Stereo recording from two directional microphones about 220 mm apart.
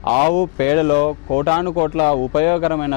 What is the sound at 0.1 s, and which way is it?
Speech, 40° left (ahead or behind).